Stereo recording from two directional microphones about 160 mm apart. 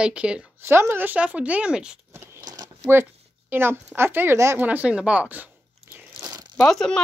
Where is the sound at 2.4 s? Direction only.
25° right (ahead or behind).